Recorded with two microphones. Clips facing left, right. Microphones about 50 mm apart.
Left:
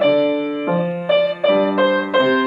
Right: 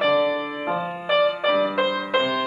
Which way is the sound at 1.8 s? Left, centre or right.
Left.